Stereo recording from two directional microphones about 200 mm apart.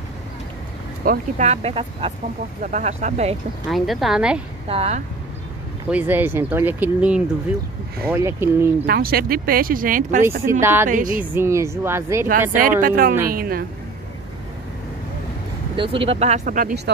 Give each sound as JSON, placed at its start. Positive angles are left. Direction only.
{"t": 1.0, "sound": "speech", "side_deg": -45}
{"t": 1.5, "sound": "speech", "side_deg": -30}
{"t": 3.6, "sound": "speech", "side_deg": 0}
{"t": 4.6, "sound": "speech", "side_deg": -30}
{"t": 5.9, "sound": "speech", "side_deg": -10}
{"t": 8.8, "sound": "speech", "side_deg": -50}
{"t": 10.6, "sound": "speech", "side_deg": -10}
{"t": 10.9, "sound": "speech", "side_deg": -40}
{"t": 11.3, "sound": "speech", "side_deg": -15}
{"t": 12.3, "sound": "speech", "side_deg": -40}
{"t": 15.7, "sound": "speech", "side_deg": -25}